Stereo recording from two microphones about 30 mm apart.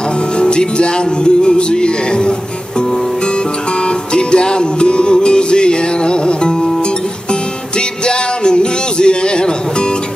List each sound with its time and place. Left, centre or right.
0.4 s music: left
3.8 s music: left
8.0 s music: left